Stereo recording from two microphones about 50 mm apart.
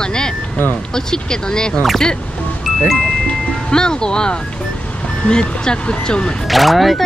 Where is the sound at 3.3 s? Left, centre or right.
Centre.